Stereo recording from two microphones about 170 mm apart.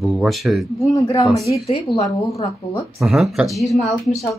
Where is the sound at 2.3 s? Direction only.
20° left (ahead or behind).